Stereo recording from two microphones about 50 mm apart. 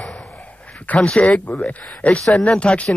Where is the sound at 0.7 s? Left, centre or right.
Left.